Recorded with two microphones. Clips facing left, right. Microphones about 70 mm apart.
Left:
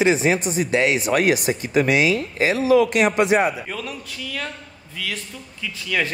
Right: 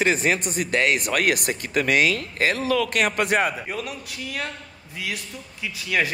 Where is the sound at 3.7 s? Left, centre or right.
Right.